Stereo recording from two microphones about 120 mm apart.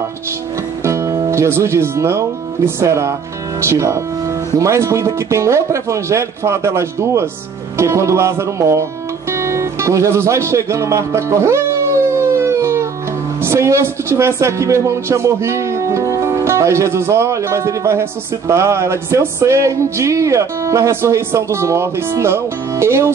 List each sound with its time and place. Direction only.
0.8 s speech: 25° right (ahead or behind)
9.3 s music: 25° right (ahead or behind)
13.4 s speech: 20° right (ahead or behind)